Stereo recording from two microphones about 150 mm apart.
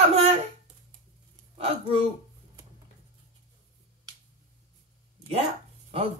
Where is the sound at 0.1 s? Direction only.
45° right (ahead or behind).